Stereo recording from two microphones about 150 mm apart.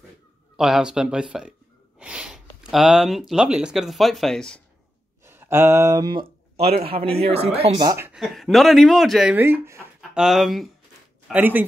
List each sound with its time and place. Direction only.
0.6 s speech: 5° right (ahead or behind)
5.2 s speech: 15° right (ahead or behind)
6.5 s a man's voice: 45° right (ahead or behind)
7.8 s speech: 20° right (ahead or behind)
8.1 s speech: centre (ahead or behind); by 9.8 s 15° right (ahead or behind)
10.1 s speech: centre (ahead or behind)